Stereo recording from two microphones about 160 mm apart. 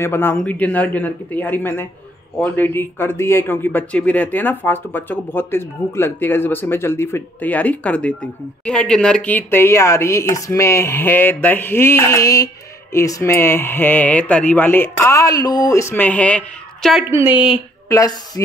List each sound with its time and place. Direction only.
0.0 s speech: 15° left (ahead or behind)
17.1 s speech: 15° right (ahead or behind)
17.8 s a woman's voice: 20° left (ahead or behind)